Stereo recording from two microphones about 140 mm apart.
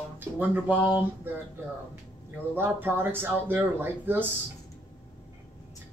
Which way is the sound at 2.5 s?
15° right (ahead or behind).